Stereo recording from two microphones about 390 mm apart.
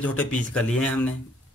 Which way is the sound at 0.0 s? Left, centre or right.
Centre.